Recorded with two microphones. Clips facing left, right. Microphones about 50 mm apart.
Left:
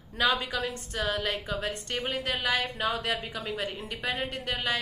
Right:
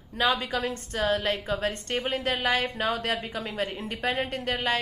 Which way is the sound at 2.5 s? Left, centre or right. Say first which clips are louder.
Right 2 dB; right.